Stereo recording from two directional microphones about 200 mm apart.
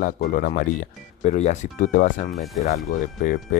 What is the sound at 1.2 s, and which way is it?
Speech, 35° left (ahead or behind).